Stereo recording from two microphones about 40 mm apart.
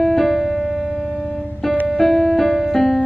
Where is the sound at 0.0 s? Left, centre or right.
Centre.